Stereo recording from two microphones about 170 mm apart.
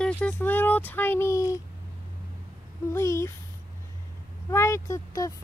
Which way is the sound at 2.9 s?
15° left (ahead or behind).